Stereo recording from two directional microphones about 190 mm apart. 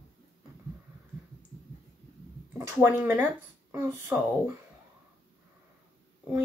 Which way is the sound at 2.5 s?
10° right (ahead or behind).